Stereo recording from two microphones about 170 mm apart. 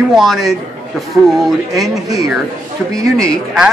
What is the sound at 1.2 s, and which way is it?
Speech, 10° right (ahead or behind).